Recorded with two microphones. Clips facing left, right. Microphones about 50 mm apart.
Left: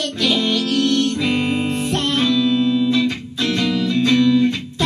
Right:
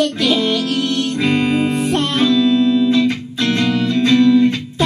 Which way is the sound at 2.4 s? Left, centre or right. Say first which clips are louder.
Right 3 dB; right.